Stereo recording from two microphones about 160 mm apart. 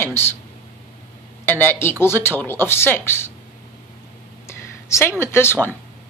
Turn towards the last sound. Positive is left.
turn(degrees=15)  # may be behind; listen again after turning